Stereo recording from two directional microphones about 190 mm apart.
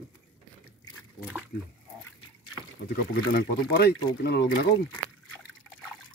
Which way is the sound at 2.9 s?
60° left (ahead or behind).